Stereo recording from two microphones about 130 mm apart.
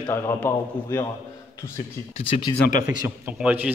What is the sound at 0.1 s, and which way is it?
Speech, 20° left (ahead or behind).